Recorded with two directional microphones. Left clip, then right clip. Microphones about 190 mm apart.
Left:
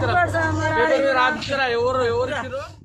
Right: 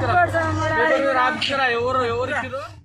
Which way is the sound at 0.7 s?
20° left (ahead or behind).